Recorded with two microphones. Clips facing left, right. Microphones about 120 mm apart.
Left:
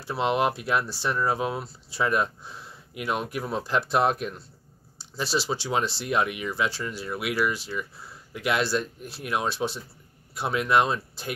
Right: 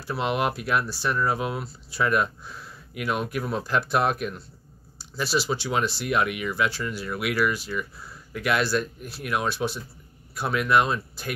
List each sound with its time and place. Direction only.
0.0 s speech: 25° left (ahead or behind)